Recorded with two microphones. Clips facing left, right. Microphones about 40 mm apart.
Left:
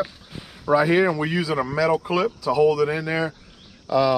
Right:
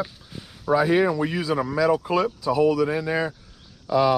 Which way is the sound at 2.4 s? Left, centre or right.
Left.